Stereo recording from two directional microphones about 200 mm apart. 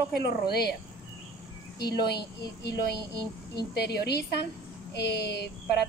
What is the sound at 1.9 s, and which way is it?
Speech, 55° left (ahead or behind).